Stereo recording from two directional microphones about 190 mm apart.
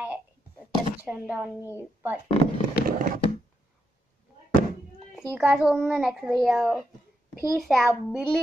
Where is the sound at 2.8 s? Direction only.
50° right (ahead or behind).